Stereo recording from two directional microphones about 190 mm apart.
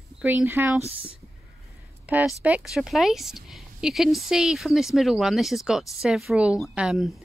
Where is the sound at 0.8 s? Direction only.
30° right (ahead or behind).